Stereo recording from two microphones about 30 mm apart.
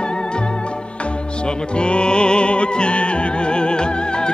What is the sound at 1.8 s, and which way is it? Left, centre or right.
Music, left.